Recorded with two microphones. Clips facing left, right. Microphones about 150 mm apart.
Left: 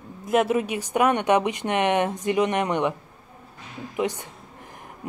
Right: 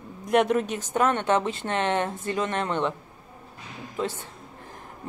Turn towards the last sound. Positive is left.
turn(degrees=15)  # may be behind; listen again after turning